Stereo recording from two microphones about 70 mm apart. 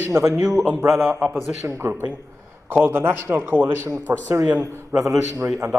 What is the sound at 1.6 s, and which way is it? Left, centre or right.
Speech, right.